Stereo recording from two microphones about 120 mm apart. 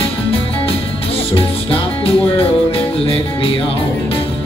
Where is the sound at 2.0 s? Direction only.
50° left (ahead or behind).